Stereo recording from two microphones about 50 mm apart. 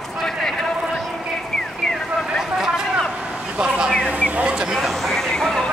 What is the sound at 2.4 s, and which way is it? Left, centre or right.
Vehicle, centre.